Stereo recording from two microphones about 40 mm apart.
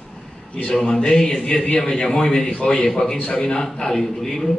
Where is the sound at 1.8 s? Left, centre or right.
Centre.